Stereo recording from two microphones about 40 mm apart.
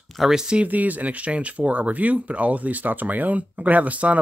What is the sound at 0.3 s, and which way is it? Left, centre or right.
Speech, centre.